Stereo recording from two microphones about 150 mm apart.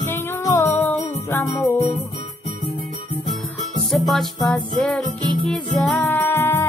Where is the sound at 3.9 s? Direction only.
Centre (ahead or behind).